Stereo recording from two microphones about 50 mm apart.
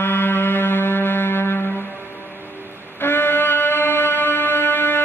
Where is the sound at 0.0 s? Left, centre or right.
Left.